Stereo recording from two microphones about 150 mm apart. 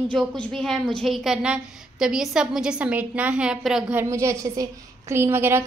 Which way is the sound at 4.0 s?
20° right (ahead or behind).